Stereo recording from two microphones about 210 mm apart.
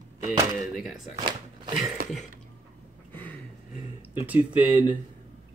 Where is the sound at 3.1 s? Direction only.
10° left (ahead or behind).